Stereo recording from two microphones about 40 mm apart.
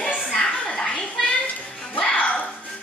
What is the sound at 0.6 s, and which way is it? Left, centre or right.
Children playing, left.